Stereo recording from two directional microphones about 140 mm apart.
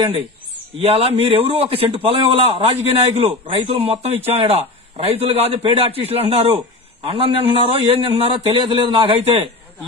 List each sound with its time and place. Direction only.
0.7 s a man's voice: 45° right (ahead or behind)